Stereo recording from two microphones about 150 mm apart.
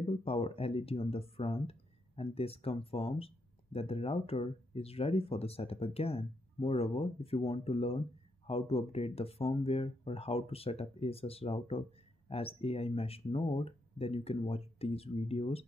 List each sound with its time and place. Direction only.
0.0 s speech: 40° left (ahead or behind)